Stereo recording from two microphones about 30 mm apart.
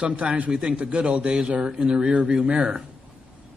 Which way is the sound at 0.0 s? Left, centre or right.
Right.